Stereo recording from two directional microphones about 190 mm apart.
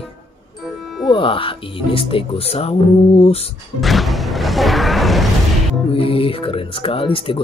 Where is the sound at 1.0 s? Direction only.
25° left (ahead or behind).